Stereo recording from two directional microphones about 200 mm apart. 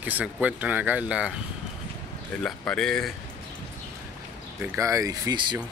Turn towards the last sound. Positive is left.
turn(degrees=-20)  # may be behind; listen again after turning